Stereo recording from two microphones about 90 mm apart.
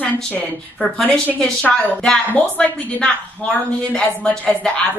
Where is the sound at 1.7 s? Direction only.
5° left (ahead or behind).